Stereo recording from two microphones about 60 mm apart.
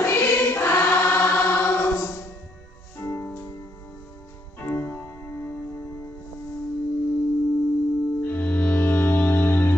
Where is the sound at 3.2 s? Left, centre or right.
Left.